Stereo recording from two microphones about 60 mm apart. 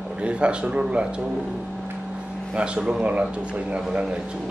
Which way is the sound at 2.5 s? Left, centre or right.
Centre.